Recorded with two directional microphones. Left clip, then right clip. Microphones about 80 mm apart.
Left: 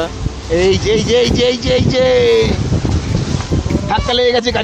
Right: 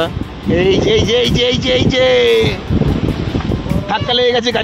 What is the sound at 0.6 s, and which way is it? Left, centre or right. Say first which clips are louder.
Speech: right 1 dB; centre.